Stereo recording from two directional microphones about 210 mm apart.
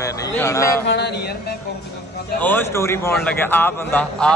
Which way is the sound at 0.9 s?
55° left (ahead or behind).